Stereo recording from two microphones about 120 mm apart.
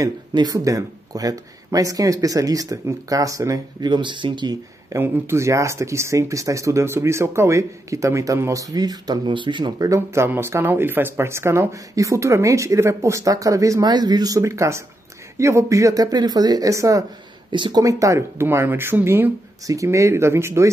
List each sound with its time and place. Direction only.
0.3 s speech: 35° right (ahead or behind)
4.9 s speech: 20° right (ahead or behind); by 9.7 s 40° right (ahead or behind)
9.8 s speech: 25° right (ahead or behind)
17.5 s speech: 40° right (ahead or behind)
17.8 s speech: 25° right (ahead or behind)
19.6 s speech: 25° right (ahead or behind)